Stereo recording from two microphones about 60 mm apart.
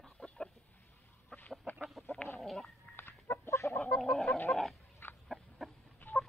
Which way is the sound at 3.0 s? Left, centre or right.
Left.